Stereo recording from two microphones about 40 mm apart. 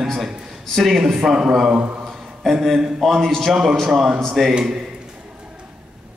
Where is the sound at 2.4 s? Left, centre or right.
Centre.